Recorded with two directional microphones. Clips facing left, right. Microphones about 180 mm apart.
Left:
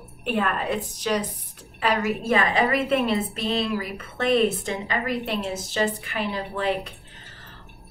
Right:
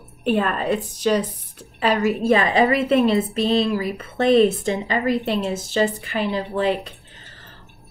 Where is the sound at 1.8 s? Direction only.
30° right (ahead or behind).